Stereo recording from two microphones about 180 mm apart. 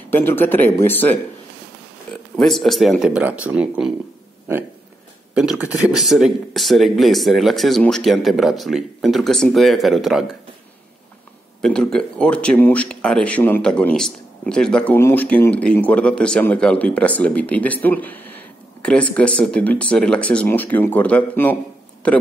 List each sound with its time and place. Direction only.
0.1 s speech: 10° left (ahead or behind)
2.3 s speech: centre (ahead or behind)
5.3 s speech: 5° right (ahead or behind)
11.6 s speech: 5° left (ahead or behind)